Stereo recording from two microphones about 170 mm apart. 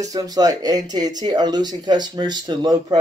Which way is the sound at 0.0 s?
20° right (ahead or behind).